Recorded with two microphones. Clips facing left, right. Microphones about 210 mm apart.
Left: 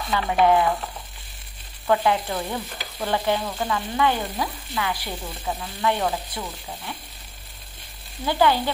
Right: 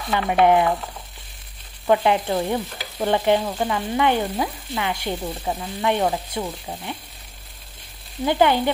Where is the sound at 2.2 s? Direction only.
25° right (ahead or behind).